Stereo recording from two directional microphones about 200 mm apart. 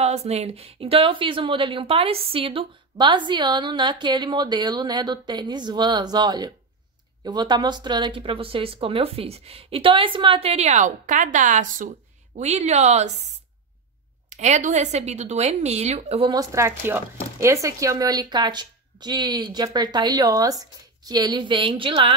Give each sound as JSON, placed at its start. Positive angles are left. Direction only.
{"t": 0.0, "sound": "a woman's voice", "side_deg": -30}
{"t": 14.3, "sound": "a woman's voice", "side_deg": -35}